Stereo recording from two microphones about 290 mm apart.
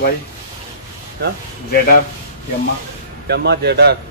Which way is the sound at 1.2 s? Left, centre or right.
Right.